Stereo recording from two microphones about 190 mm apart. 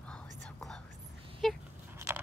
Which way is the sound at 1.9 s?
15° right (ahead or behind).